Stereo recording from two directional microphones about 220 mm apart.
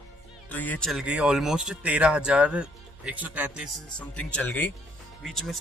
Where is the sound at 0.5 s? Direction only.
5° left (ahead or behind).